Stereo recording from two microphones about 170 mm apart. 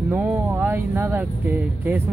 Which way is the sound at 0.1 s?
10° right (ahead or behind).